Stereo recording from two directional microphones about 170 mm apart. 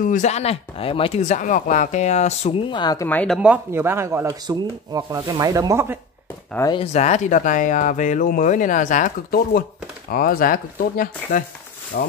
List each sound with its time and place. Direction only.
0.0 s speech: 45° left (ahead or behind); by 3.1 s 25° left (ahead or behind)
3.1 s speech: 10° left (ahead or behind)
3.3 s speech: 5° right (ahead or behind)
6.7 s speech: 35° left (ahead or behind); by 12.1 s 60° left (ahead or behind)